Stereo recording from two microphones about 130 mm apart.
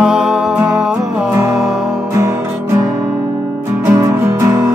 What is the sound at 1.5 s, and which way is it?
Music, centre (ahead or behind).